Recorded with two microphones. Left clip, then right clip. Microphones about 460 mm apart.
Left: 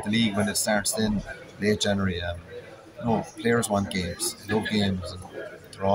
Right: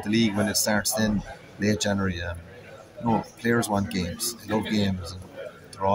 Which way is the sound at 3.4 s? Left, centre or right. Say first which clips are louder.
Left 1 dB; right.